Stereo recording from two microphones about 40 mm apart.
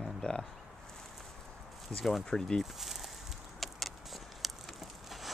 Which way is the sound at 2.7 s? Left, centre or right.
Centre.